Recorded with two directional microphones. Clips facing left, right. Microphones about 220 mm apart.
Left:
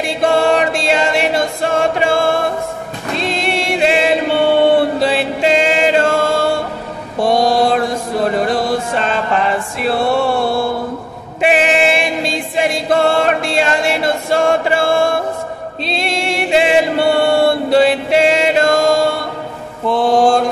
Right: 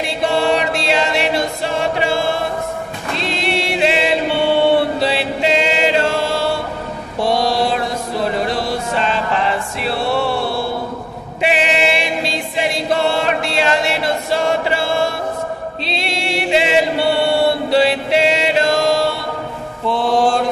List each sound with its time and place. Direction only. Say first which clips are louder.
0.0 s choir: left 3 dB; 50° left (ahead or behind)
3.2 s singing: left 2 dB; 50° left (ahead or behind)
5.0 s chant: left 3 dB; 50° left (ahead or behind)
7.2 s mantra: left 4 dB; 50° left (ahead or behind)
9.8 s music: left 5 dB; 50° left (ahead or behind)
11.4 s choir: left 4 dB; 50° left (ahead or behind)
15.8 s chant: left 6 dB; 50° left (ahead or behind)
19.9 s mantra: left 4 dB; 45° left (ahead or behind)